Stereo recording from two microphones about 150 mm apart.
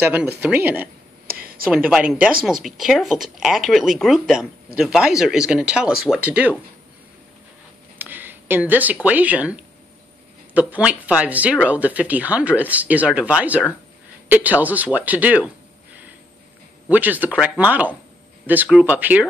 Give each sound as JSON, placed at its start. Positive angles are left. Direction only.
{"t": 0.0, "sound": "speech", "side_deg": -10}
{"t": 1.2, "sound": "a sound", "side_deg": -75}
{"t": 1.7, "sound": "speech", "side_deg": -5}
{"t": 8.0, "sound": "a sound", "side_deg": -15}
{"t": 9.0, "sound": "speech", "side_deg": -10}
{"t": 16.9, "sound": "speech", "side_deg": -10}